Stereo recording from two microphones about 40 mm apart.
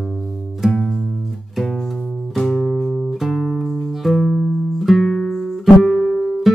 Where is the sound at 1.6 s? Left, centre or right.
Centre.